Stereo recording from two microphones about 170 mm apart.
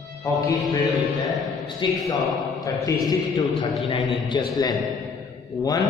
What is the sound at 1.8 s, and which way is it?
A man's voice, 25° left (ahead or behind).